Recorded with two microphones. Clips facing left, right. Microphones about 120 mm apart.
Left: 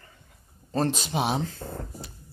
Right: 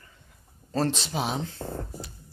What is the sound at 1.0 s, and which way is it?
Speech, 15° left (ahead or behind).